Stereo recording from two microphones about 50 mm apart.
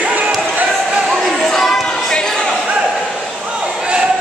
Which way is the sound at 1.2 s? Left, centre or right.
Centre.